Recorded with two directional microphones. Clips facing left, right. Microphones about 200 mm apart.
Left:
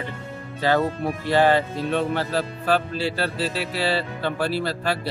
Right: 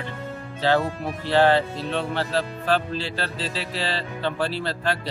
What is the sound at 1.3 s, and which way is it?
Speech, 10° left (ahead or behind).